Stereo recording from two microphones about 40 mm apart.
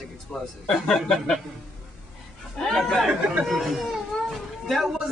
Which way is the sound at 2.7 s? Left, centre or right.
Centre.